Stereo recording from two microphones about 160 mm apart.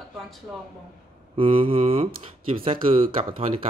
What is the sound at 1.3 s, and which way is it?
Speech, 35° right (ahead or behind).